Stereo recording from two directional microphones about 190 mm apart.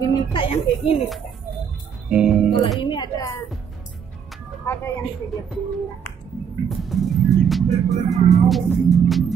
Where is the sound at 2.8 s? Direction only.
25° left (ahead or behind).